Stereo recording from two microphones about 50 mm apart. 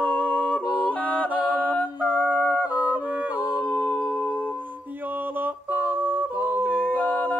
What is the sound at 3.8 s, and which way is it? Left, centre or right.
Music, left.